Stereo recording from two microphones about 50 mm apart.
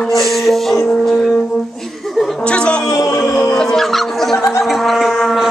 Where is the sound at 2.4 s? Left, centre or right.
Left.